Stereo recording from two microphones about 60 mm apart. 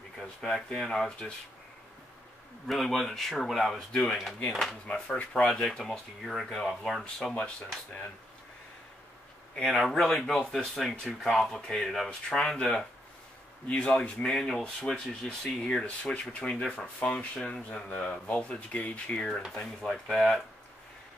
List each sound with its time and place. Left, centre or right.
0.4 s speech: centre
2.6 s speech: centre
4.8 s speech: centre
5.5 s speech: centre
7.3 s speech: centre
9.7 s speech: centre; by 19.2 s left
19.5 s speech: centre